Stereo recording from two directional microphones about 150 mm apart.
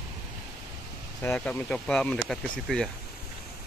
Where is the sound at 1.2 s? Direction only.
10° left (ahead or behind).